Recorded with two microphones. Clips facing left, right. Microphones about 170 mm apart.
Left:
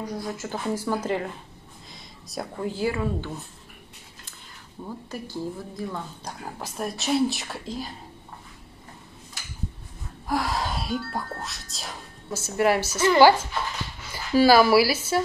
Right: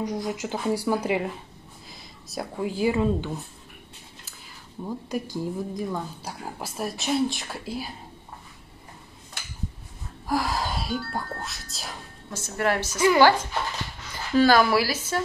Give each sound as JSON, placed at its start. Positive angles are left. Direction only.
{"t": 0.0, "sound": "a woman's voice", "side_deg": -20}
{"t": 1.9, "sound": "a sound", "side_deg": 0}
{"t": 2.6, "sound": "a woman's voice", "side_deg": -15}
{"t": 4.8, "sound": "a woman's voice", "side_deg": -15}
{"t": 10.2, "sound": "speech", "side_deg": 0}
{"t": 14.1, "sound": "speech", "side_deg": 10}